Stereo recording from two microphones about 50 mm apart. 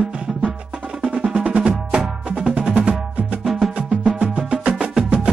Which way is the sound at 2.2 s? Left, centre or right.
Right.